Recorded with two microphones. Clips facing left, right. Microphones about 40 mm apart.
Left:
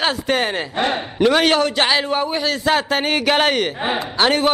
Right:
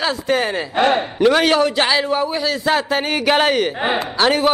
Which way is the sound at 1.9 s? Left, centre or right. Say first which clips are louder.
Right 1 dB; centre.